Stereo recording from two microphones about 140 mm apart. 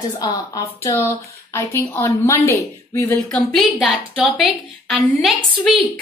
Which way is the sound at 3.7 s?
10° right (ahead or behind).